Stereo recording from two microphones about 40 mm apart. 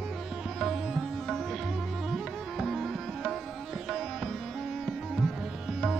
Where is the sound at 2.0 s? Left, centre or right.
Centre.